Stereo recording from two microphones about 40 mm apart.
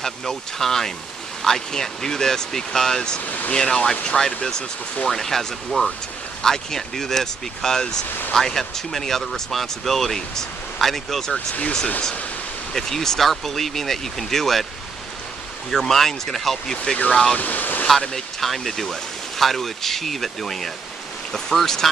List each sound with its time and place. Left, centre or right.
0.0 s speech: centre
3.3 s speech: left
3.5 s speech: centre
11.3 s speech: left
12.7 s speech: centre
15.7 s speech: centre
17.4 s waves: left
17.8 s speech: centre